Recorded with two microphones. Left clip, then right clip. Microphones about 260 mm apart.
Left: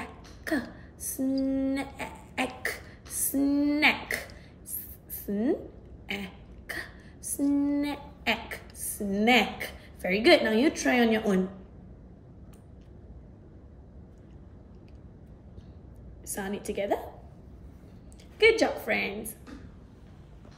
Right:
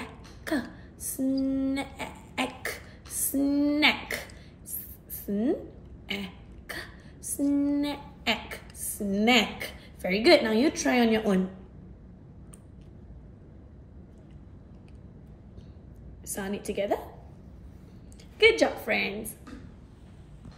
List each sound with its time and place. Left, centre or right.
0.0 s a sound: centre
5.2 s a woman's voice: centre
6.0 s a sound: centre
10.8 s a woman's voice: centre
16.3 s a woman's voice: centre
18.4 s a woman's voice: centre